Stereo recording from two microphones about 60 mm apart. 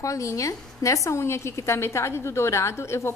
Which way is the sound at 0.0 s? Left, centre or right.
Left.